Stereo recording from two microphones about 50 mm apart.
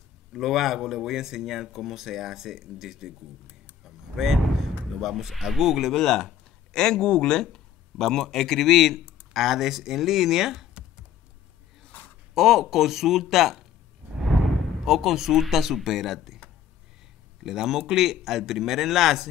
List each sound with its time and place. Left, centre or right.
0.3 s speech: centre
3.8 s vehicle: centre
5.0 s a man's voice: centre
5.9 s a man's voice: centre
11.9 s a sound: left
12.4 s speech: centre
17.4 s a man's voice: centre